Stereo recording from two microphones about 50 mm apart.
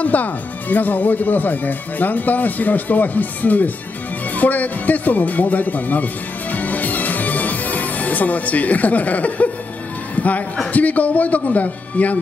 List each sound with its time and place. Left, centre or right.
0.0 s speech: left
6.5 s music: left
10.1 s a sound: left
10.7 s speech: left